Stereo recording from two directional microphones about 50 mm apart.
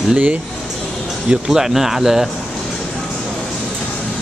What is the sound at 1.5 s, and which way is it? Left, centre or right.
Speech, centre.